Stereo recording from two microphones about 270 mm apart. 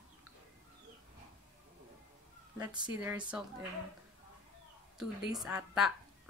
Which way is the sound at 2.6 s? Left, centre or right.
Centre.